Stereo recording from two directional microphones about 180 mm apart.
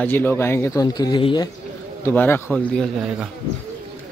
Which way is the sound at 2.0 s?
10° left (ahead or behind).